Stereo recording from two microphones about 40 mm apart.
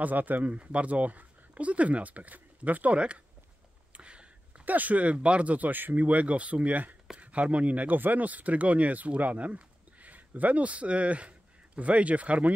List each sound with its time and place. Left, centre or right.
0.0 s speech: right
3.9 s a sound: right
4.6 s speech: right
7.2 s speech: right